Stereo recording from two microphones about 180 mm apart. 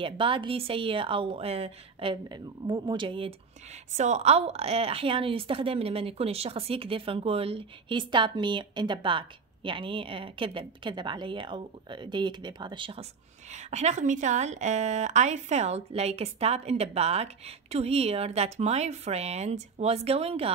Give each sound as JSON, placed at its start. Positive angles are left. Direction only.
{"t": 0.0, "sound": "a woman's voice", "side_deg": -30}
{"t": 3.9, "sound": "a woman's voice", "side_deg": -40}
{"t": 13.5, "sound": "a woman's voice", "side_deg": -40}